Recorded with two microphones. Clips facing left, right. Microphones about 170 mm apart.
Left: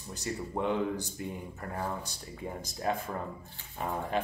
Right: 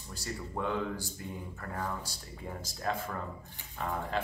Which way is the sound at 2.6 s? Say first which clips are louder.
Left 2 dB; 20° left (ahead or behind).